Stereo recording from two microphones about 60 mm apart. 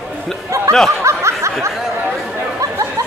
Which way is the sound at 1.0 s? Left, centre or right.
Right.